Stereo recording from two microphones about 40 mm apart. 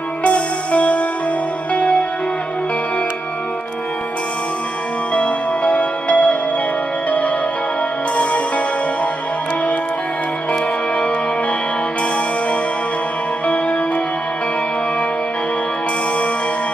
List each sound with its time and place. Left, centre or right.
0.2 s music: left
5.1 s music: left
8.2 s music: left